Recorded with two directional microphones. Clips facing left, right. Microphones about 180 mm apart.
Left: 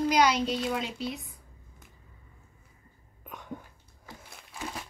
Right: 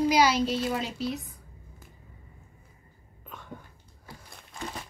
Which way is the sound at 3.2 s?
15° left (ahead or behind).